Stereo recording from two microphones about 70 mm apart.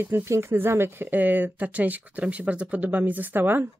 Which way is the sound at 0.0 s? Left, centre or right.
Right.